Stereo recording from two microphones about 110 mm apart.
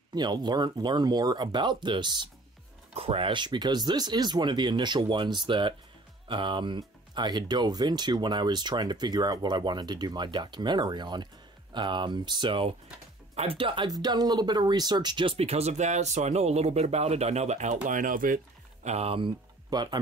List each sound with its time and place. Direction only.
0.1 s speech: 40° right (ahead or behind)
2.9 s speech: 65° right (ahead or behind)
13.8 s speech: 35° right (ahead or behind)
15.3 s speech: 70° right (ahead or behind); by 17.7 s 90° right
18.9 s speech: 70° right (ahead or behind)
19.7 s speech: 40° right (ahead or behind)